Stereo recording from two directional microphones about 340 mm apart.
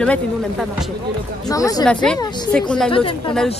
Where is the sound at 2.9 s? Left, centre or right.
Centre.